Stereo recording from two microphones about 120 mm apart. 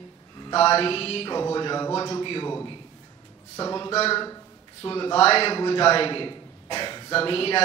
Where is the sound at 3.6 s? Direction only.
35° left (ahead or behind).